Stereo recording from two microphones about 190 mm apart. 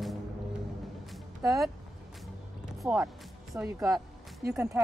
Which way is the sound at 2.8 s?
5° right (ahead or behind).